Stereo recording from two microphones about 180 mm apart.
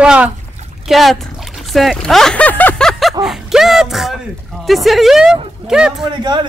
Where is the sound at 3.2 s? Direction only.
Centre (ahead or behind).